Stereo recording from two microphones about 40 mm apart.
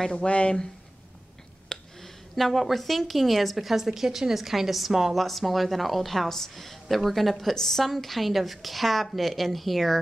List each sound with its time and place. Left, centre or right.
0.1 s speech: left
1.7 s speech: centre